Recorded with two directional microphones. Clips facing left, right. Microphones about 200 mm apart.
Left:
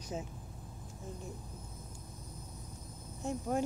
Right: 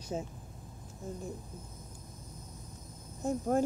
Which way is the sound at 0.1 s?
35° right (ahead or behind).